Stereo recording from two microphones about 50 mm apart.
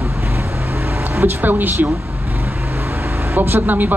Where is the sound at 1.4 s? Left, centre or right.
Right.